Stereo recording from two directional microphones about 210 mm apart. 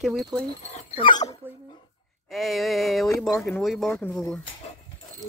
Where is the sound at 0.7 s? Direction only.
30° left (ahead or behind).